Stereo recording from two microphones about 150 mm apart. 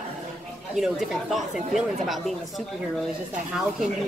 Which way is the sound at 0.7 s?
5° right (ahead or behind).